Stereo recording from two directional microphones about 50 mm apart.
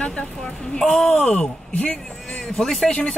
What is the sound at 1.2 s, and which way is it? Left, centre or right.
Speech, centre.